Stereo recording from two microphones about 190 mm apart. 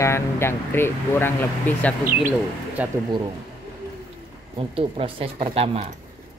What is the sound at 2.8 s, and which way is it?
Speech, 10° right (ahead or behind).